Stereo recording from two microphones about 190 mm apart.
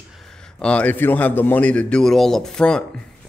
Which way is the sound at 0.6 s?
5° left (ahead or behind).